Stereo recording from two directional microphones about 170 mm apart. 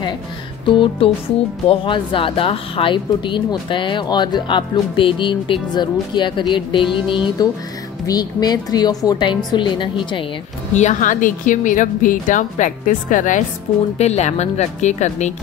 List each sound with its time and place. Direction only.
0.7 s music: 30° left (ahead or behind)
1.7 s a woman's voice: 30° left (ahead or behind)
10.7 s a woman's voice: 45° left (ahead or behind)